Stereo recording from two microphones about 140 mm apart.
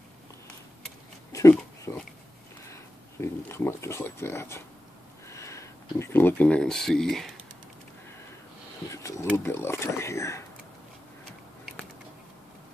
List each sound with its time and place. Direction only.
1.9 s speech: 20° left (ahead or behind); by 7.3 s 5° left (ahead or behind)
8.9 s speech: 20° left (ahead or behind)